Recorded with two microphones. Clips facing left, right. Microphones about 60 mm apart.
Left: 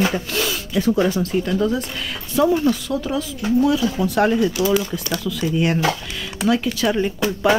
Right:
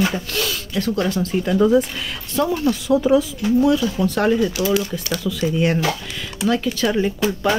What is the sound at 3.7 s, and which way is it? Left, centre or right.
Speech, centre.